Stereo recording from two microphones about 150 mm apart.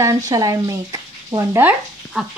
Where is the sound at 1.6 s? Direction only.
Centre (ahead or behind).